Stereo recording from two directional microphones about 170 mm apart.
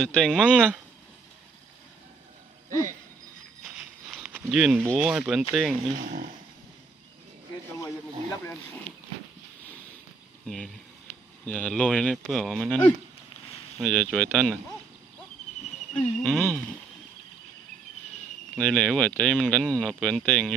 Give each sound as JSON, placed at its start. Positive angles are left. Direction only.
{"t": 0.1, "sound": "speech", "side_deg": 0}
{"t": 3.6, "sound": "a sound", "side_deg": -5}
{"t": 4.9, "sound": "speech", "side_deg": -5}
{"t": 5.9, "sound": "speech", "side_deg": -50}
{"t": 10.4, "sound": "speech", "side_deg": 0}
{"t": 15.9, "sound": "speech", "side_deg": 5}
{"t": 18.6, "sound": "speech", "side_deg": 5}